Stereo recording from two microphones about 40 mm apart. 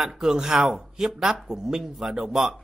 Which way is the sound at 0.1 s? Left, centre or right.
Centre.